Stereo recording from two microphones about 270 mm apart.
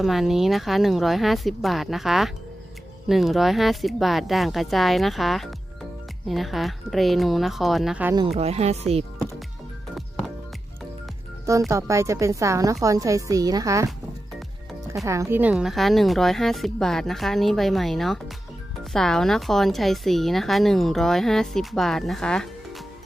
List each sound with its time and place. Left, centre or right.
0.0 s speech: centre
8.4 s speech: right
11.7 s speech: centre
14.9 s speech: centre